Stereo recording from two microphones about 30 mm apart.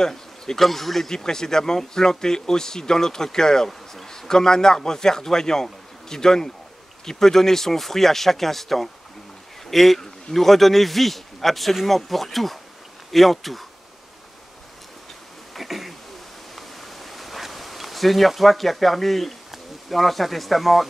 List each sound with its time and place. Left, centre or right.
0.0 s bee: left
0.6 s a man's voice: centre
15.5 s a sound: centre
16.5 s bee: centre